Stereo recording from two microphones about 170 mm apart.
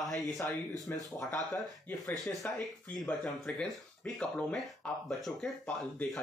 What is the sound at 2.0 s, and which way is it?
Speech, centre (ahead or behind).